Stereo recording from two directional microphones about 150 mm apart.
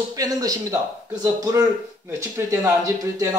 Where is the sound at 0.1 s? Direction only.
25° right (ahead or behind).